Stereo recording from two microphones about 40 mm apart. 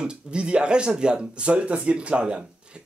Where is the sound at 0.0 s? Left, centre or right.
Right.